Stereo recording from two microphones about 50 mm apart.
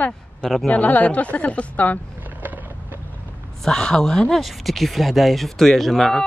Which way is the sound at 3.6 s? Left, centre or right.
Centre.